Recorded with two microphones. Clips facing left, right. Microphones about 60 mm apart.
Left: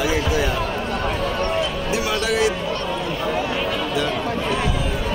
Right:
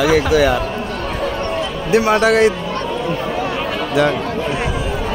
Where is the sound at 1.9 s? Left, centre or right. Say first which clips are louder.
Right 11 dB; right.